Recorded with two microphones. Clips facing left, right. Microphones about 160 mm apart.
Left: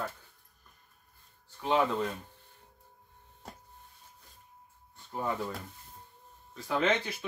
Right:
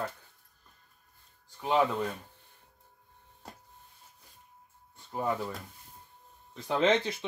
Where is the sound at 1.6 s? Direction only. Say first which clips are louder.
Right 1 dB; 10° right (ahead or behind).